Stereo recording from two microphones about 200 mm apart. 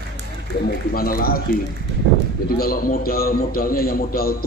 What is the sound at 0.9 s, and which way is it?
Speech, 45° left (ahead or behind).